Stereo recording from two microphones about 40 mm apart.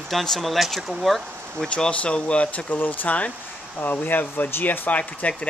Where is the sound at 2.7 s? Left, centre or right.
Left.